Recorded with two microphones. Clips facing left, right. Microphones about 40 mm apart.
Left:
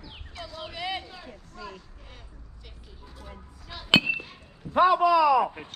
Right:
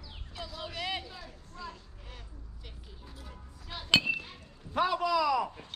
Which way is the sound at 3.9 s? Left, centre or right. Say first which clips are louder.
Left 5 dB; centre.